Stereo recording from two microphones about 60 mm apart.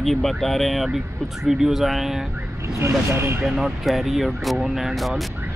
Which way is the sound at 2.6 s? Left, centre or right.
Right.